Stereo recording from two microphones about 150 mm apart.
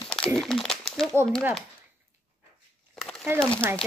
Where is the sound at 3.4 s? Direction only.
10° left (ahead or behind).